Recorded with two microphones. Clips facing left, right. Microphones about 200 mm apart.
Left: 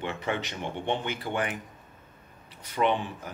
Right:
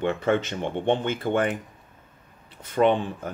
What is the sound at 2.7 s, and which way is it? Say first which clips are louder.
Speech: right 6 dB; 50° right (ahead or behind).